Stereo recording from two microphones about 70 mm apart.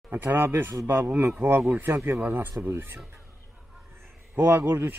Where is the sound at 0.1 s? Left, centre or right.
Right.